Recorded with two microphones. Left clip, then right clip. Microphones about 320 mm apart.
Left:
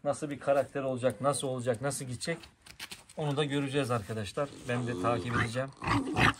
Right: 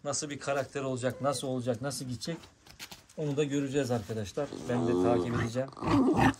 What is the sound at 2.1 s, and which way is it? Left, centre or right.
Speech, centre.